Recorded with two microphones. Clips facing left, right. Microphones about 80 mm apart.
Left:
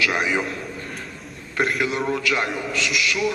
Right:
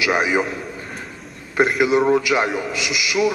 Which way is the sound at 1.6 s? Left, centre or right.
Centre.